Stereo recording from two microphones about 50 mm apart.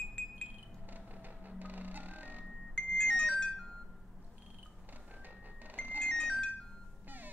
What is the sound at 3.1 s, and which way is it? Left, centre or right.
Music, right.